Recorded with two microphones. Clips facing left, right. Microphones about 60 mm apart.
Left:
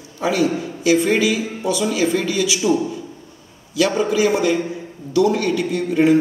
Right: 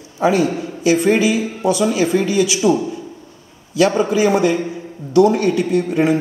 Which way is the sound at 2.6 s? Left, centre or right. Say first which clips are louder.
Right 2 dB; right.